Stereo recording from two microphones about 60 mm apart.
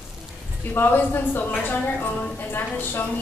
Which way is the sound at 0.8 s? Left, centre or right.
Left.